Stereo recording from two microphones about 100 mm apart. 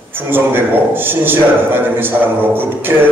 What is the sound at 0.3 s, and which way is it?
A man's voice, 20° right (ahead or behind).